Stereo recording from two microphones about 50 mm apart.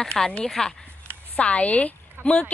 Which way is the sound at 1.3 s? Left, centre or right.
Left.